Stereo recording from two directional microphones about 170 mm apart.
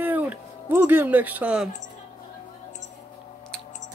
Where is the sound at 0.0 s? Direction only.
10° right (ahead or behind).